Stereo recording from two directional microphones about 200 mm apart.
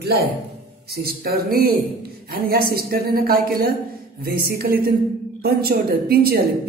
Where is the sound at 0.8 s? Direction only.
50° right (ahead or behind).